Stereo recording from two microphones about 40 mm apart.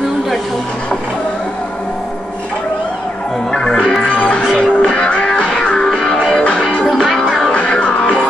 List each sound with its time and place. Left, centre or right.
3.5 s music: centre
7.2 s music: centre
7.5 s music: left